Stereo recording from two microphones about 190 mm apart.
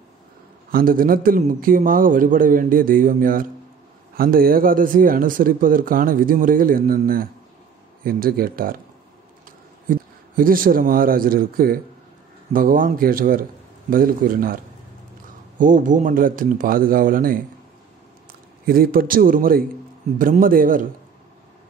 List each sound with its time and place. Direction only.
0.7 s speech: 50° right (ahead or behind)
9.8 s speech: 50° right (ahead or behind)
18.7 s speech: 50° right (ahead or behind)